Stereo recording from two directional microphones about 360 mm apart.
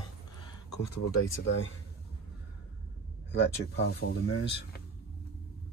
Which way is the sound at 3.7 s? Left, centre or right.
Left.